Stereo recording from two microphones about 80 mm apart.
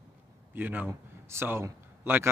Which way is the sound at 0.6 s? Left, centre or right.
Right.